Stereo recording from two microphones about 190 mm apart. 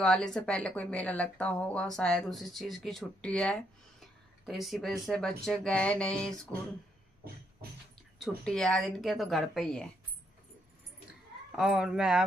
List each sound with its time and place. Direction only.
0.0 s speech: centre (ahead or behind)
8.2 s speech: centre (ahead or behind)
11.5 s speech: 5° right (ahead or behind)